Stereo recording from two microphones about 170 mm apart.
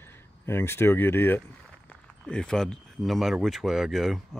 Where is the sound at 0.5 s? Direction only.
15° left (ahead or behind).